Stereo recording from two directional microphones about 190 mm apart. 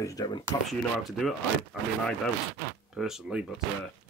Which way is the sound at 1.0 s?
Centre (ahead or behind).